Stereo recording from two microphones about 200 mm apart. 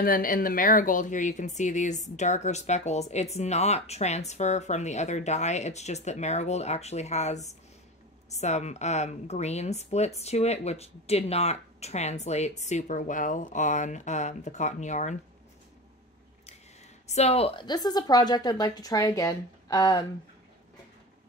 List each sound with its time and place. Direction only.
0.0 s speech: 45° left (ahead or behind)
17.1 s a woman's voice: 30° left (ahead or behind)